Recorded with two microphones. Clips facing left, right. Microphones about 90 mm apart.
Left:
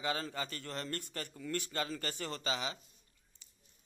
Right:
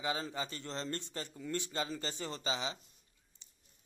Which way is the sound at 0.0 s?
15° right (ahead or behind).